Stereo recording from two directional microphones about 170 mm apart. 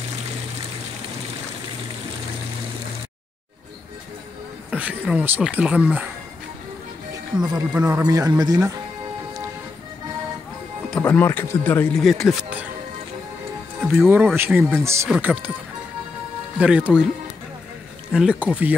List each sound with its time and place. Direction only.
4.6 s speech: 5° right (ahead or behind)
7.7 s speech: 10° right (ahead or behind)
11.0 s speech: 10° left (ahead or behind)
12.0 s speech: centre (ahead or behind)
13.9 s speech: 10° right (ahead or behind)
16.5 s speech: 5° right (ahead or behind)
18.1 s speech: 5° right (ahead or behind)